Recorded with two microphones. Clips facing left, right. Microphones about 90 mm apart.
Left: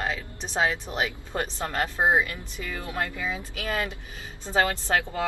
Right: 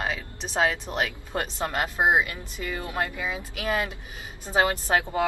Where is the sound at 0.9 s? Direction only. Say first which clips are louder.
Right 1 dB; 5° left (ahead or behind).